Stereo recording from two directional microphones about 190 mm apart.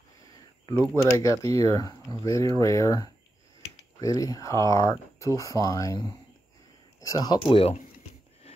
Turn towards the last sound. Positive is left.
turn(degrees=30)  # may be behind; listen again after turning